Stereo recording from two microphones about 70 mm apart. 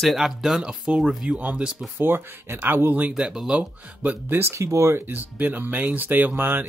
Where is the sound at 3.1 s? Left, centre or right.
Centre.